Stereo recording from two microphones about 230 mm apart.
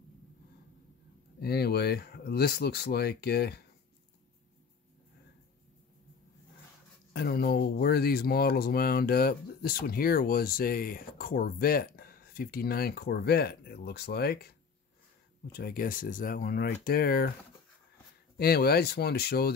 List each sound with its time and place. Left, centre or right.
1.4 s speech: left
7.1 s speech: left
15.5 s speech: left
18.4 s speech: left